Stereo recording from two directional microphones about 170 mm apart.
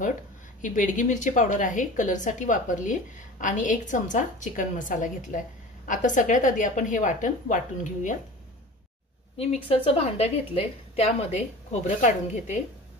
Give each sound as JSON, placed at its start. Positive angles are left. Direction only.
{"t": 0.6, "sound": "a woman's voice", "side_deg": 50}
{"t": 9.7, "sound": "a woman's voice", "side_deg": 35}